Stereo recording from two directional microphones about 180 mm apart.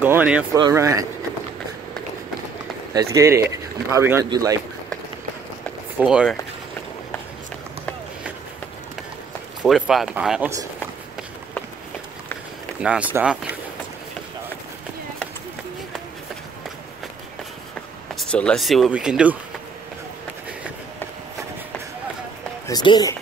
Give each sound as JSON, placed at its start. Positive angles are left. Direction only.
{"t": 0.0, "sound": "speech", "side_deg": -10}
{"t": 0.6, "sound": "speech", "side_deg": -20}
{"t": 2.9, "sound": "speech", "side_deg": -15}
{"t": 5.9, "sound": "speech", "side_deg": -5}
{"t": 9.6, "sound": "speech", "side_deg": -5}
{"t": 12.7, "sound": "speech", "side_deg": -5}
{"t": 18.1, "sound": "speech", "side_deg": 5}
{"t": 22.7, "sound": "speech", "side_deg": 25}